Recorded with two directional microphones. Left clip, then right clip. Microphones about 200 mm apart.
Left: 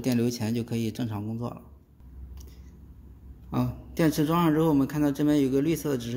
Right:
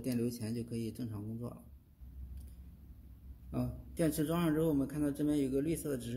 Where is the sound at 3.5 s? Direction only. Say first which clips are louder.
Left 10 dB; 35° left (ahead or behind).